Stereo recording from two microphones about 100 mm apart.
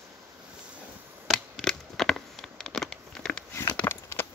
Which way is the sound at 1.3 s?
5° left (ahead or behind).